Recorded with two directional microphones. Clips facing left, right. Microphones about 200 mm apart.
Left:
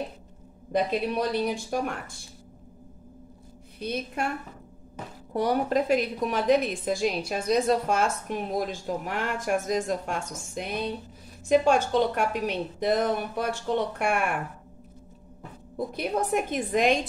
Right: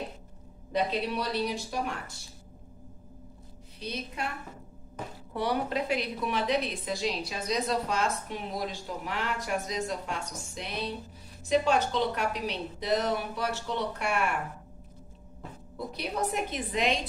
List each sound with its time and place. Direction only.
0.7 s a woman's voice: 50° left (ahead or behind)
3.8 s a woman's voice: 50° left (ahead or behind)
5.3 s a woman's voice: 45° left (ahead or behind)
15.7 s a woman's voice: 50° left (ahead or behind)